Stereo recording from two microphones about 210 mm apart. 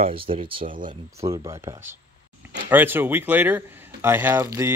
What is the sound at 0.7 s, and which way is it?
Speech, 40° right (ahead or behind).